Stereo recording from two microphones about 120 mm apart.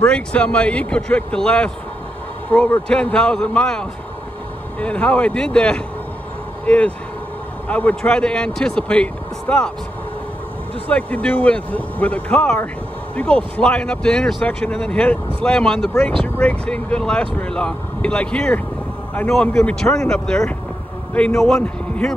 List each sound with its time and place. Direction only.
0.0 s speech: 10° left (ahead or behind)
10.9 s speech: 10° left (ahead or behind)
21.1 s a man's voice: 15° left (ahead or behind)